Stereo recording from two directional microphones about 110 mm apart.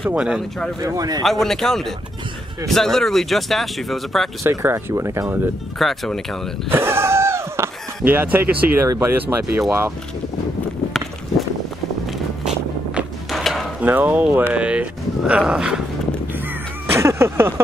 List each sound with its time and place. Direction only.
0.1 s speech: 10° right (ahead or behind)
0.7 s speech: 35° right (ahead or behind)
1.2 s speech: 5° left (ahead or behind)
4.4 s speech: 25° right (ahead or behind)
5.8 s speech: centre (ahead or behind)
6.7 s a sound: 20° right (ahead or behind)
8.8 s speech: 30° right (ahead or behind)
9.1 s speech: 20° right (ahead or behind)
13.3 s mechanisms: centre (ahead or behind)
13.7 s speech: 15° right (ahead or behind)
16.9 s speech: 25° right (ahead or behind)